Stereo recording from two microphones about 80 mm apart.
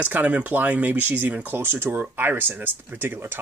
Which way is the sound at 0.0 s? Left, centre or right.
Centre.